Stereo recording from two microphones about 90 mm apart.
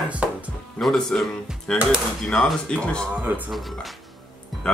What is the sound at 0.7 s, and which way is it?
Speech, 5° left (ahead or behind).